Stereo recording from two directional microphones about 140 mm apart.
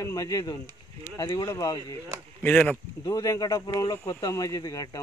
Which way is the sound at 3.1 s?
25° left (ahead or behind).